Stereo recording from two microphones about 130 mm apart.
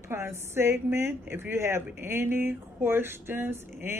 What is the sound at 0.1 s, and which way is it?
A woman's voice, 20° right (ahead or behind).